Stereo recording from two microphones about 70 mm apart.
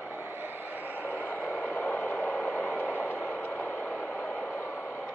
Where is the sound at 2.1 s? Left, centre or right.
Centre.